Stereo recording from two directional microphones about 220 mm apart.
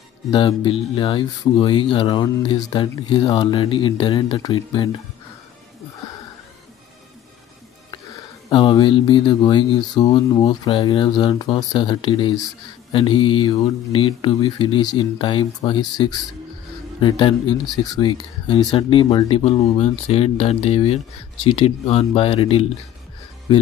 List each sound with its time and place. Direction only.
0.3 s speech: 25° left (ahead or behind)
8.5 s speech: 20° left (ahead or behind)